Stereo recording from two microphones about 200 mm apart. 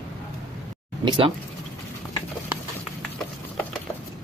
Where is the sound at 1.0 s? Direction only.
25° right (ahead or behind).